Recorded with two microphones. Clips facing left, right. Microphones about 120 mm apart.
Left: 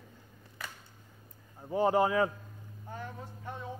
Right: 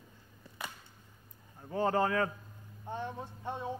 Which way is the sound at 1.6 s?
15° left (ahead or behind).